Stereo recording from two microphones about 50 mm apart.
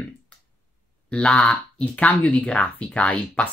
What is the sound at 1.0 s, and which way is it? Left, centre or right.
Speech, left.